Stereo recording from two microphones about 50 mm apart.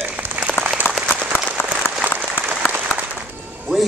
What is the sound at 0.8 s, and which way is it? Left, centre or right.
Applause, left.